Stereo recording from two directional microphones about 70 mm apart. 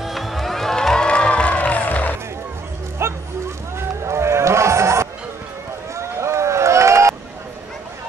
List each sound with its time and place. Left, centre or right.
0.0 s crowd: centre; by 2.1 s left
3.0 s a sound: right
3.7 s run: right